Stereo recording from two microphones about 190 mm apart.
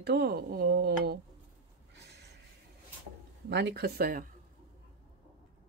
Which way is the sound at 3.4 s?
65° right (ahead or behind).